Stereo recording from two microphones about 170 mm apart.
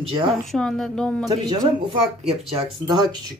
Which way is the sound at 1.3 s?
25° right (ahead or behind).